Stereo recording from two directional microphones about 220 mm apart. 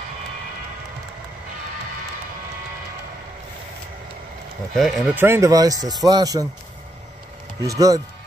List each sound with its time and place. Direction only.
4.7 s speech: centre (ahead or behind); by 6.4 s 15° right (ahead or behind)
7.6 s speech: 15° right (ahead or behind)